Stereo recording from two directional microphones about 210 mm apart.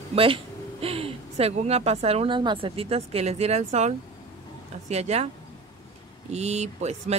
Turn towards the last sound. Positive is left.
turn(degrees=-30)  # may be behind; listen again after turning